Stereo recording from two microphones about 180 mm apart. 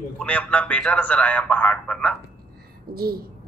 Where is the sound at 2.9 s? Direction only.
55° right (ahead or behind).